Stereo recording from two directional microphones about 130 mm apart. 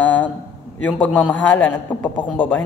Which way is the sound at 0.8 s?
10° left (ahead or behind).